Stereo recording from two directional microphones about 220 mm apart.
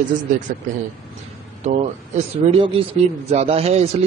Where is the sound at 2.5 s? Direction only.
25° right (ahead or behind).